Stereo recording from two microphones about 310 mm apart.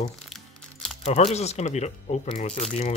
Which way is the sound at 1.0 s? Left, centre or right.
Left.